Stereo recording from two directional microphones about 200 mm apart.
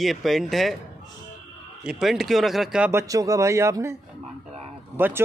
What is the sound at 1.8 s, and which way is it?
Speech, centre (ahead or behind).